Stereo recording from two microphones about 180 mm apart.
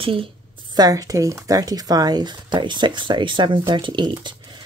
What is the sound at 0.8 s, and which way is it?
Speech, 20° right (ahead or behind).